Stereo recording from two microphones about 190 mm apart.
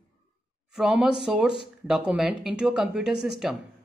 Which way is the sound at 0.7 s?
5° right (ahead or behind).